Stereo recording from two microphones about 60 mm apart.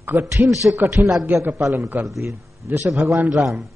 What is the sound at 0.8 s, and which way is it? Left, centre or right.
A man's voice, right.